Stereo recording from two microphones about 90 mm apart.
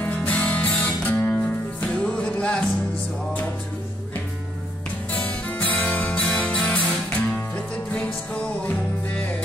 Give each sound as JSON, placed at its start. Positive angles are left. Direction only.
{"t": 0.0, "sound": "music", "side_deg": 15}
{"t": 5.1, "sound": "music", "side_deg": 20}